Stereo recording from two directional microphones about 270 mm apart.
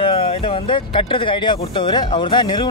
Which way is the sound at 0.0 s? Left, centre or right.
Centre.